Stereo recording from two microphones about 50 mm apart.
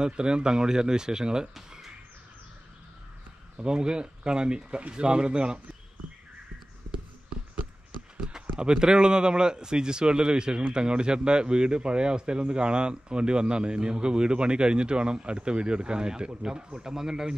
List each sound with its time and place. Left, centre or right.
0.0 s speech: centre
1.5 s a sound: centre
3.5 s speech: centre
8.2 s run: centre
8.5 s a man's voice: centre